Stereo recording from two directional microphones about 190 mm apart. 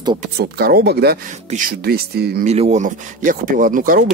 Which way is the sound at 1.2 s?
45° right (ahead or behind).